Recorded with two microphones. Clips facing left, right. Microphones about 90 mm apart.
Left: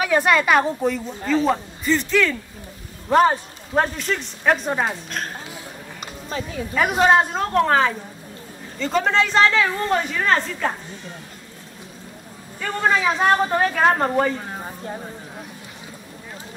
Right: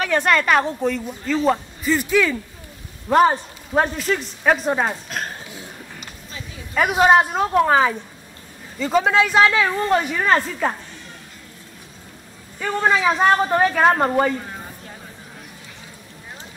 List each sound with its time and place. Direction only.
0.0 s speech: 5° left (ahead or behind)
5.9 s a sound: 40° left (ahead or behind)
6.7 s speech: 5° right (ahead or behind)
12.5 s speech: 5° right (ahead or behind)